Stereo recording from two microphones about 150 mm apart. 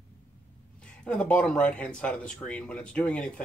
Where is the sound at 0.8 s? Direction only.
5° left (ahead or behind).